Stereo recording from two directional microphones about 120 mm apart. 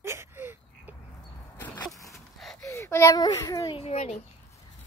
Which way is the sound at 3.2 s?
30° left (ahead or behind).